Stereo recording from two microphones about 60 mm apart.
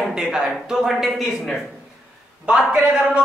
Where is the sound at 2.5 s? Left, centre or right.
Centre.